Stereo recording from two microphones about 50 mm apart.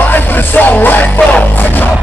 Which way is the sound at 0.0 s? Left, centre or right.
Left.